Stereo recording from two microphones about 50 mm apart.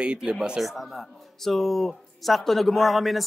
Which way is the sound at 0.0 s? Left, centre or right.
Centre.